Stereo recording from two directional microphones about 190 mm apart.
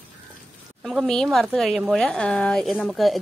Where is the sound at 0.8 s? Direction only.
Centre (ahead or behind).